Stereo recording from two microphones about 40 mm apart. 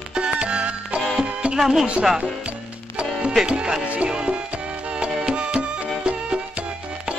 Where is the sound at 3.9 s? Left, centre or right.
Right.